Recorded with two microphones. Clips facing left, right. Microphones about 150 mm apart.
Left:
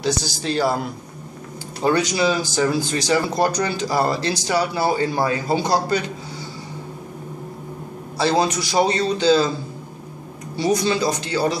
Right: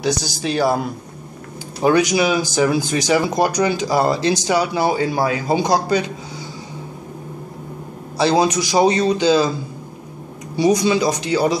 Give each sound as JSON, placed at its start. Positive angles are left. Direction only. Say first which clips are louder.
{"t": 0.0, "sound": "speech", "louder": "right 2 dB", "side_deg": -15}
{"t": 8.2, "sound": "speech", "louder": "right 3 dB", "side_deg": -15}
{"t": 10.5, "sound": "speech", "louder": "right 4 dB", "side_deg": -15}